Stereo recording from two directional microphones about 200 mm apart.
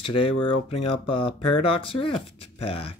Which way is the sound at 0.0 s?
25° left (ahead or behind).